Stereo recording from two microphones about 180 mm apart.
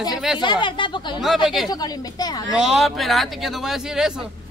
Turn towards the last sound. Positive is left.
turn(degrees=-5)  # may be behind; listen again after turning